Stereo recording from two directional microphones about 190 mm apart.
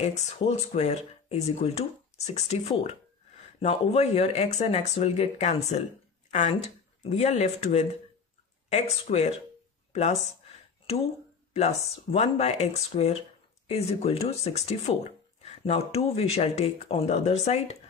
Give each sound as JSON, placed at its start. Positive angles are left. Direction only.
{"t": 0.0, "sound": "speech", "side_deg": 35}
{"t": 11.5, "sound": "speech", "side_deg": 35}